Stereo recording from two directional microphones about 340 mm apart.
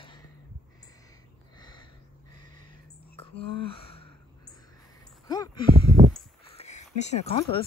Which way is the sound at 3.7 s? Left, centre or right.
Centre.